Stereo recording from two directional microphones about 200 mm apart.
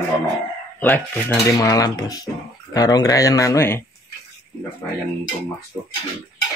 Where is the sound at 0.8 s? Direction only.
5° left (ahead or behind).